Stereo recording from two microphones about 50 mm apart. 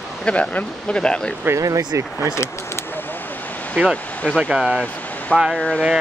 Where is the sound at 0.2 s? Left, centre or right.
Left.